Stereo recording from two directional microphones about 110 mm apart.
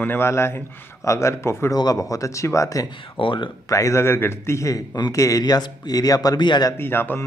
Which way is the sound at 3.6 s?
30° left (ahead or behind).